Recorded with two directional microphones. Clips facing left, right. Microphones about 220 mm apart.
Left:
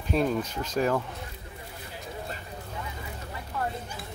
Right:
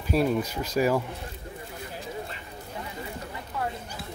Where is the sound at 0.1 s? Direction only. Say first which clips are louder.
Right 2 dB; 5° right (ahead or behind).